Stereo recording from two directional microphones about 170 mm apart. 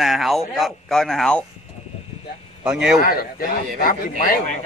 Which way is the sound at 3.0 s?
60° left (ahead or behind).